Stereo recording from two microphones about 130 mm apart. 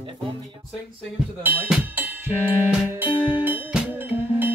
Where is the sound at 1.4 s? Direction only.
15° right (ahead or behind).